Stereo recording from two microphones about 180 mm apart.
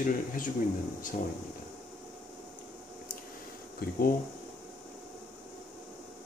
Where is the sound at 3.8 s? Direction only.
55° left (ahead or behind).